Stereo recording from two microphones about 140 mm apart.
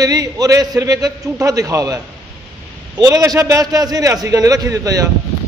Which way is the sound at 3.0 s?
25° right (ahead or behind).